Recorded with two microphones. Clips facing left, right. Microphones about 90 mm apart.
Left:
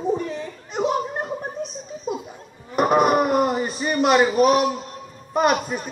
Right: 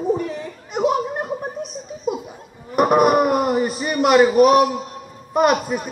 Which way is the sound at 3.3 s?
30° left (ahead or behind).